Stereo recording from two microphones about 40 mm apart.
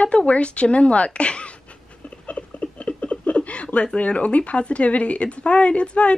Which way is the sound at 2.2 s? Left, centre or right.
Left.